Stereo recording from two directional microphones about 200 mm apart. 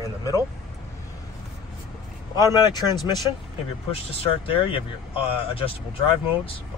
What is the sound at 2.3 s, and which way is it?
Speech, 20° left (ahead or behind).